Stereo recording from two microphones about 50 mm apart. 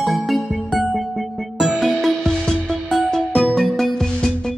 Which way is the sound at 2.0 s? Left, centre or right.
Centre.